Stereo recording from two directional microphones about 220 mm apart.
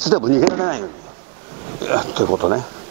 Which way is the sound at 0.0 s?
25° right (ahead or behind).